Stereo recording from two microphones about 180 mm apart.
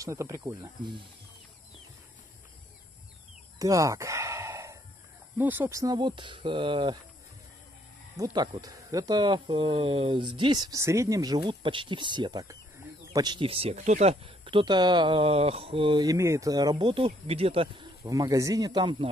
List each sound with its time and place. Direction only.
0.0 s speech: 15° right (ahead or behind)
3.5 s chicken: 20° right (ahead or behind)
5.4 s speech: 10° right (ahead or behind); by 7.0 s 25° right (ahead or behind)
8.2 s speech: 20° right (ahead or behind)
18.0 s speech: 20° right (ahead or behind)